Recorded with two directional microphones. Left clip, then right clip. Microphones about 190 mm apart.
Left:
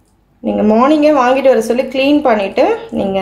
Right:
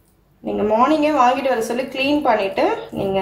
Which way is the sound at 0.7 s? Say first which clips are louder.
Left 5 dB; 40° left (ahead or behind).